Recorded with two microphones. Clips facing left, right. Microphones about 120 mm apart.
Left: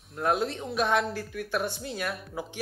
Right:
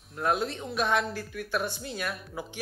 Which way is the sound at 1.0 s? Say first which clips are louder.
Left 2 dB; 40° left (ahead or behind).